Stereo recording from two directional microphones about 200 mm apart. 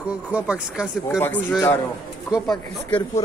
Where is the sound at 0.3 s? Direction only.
5° right (ahead or behind).